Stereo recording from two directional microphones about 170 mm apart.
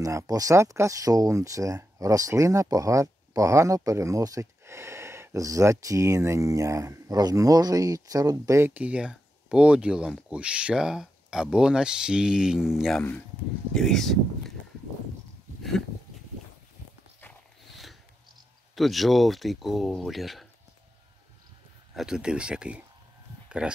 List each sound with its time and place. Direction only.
0.0 s speech: 20° right (ahead or behind); by 14.5 s centre (ahead or behind)
18.8 s speech: centre (ahead or behind)
21.9 s speech: 5° right (ahead or behind)